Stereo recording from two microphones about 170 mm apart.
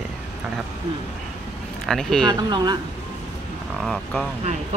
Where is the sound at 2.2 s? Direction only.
25° right (ahead or behind).